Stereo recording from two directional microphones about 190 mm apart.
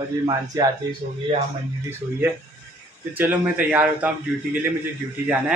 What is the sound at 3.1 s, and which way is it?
Speech, 10° right (ahead or behind).